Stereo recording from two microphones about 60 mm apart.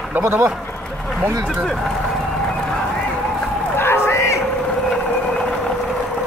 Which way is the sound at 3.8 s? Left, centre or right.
Left.